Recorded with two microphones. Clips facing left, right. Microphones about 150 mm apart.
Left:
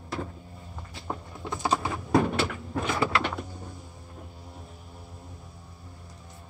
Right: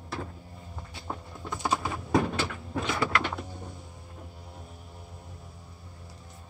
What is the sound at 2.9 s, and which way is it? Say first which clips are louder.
Bird: left 2 dB; 25° left (ahead or behind).